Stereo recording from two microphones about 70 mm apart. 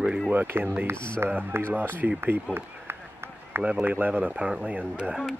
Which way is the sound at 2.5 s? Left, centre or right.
Right.